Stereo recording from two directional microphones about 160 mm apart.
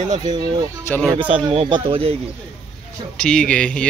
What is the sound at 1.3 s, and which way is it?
Speech, 35° right (ahead or behind).